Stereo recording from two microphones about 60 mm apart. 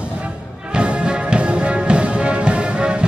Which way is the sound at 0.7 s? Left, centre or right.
Centre.